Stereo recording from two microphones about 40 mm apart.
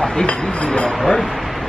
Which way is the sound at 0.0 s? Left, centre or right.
Centre.